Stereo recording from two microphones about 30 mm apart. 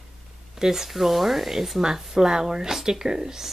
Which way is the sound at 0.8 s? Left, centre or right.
Centre.